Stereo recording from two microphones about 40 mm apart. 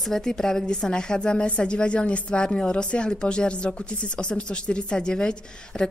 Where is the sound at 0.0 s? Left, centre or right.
Centre; by 2.4 s left.